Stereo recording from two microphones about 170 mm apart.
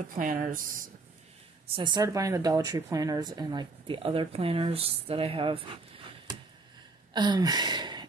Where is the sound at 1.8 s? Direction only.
25° right (ahead or behind).